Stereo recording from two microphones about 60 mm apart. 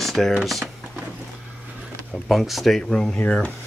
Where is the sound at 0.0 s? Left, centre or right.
Centre.